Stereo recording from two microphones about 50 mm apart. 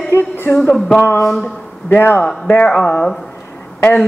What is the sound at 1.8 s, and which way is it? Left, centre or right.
Speech, left.